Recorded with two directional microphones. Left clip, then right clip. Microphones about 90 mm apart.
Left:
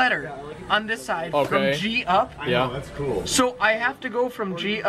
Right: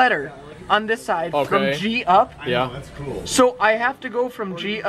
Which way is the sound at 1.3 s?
20° right (ahead or behind).